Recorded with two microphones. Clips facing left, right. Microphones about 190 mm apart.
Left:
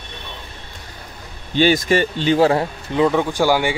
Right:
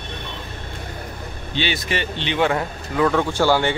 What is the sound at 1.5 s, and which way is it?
A man's voice, 45° left (ahead or behind).